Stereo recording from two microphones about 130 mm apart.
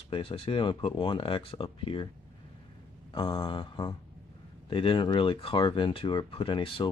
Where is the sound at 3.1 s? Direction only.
40° left (ahead or behind).